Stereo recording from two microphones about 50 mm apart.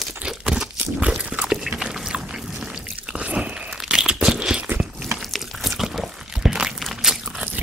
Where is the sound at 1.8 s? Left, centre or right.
Centre.